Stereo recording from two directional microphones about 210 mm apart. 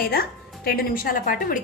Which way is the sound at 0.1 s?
45° left (ahead or behind).